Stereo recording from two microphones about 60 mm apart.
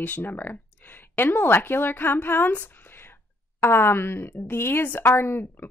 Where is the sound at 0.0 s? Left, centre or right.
Left.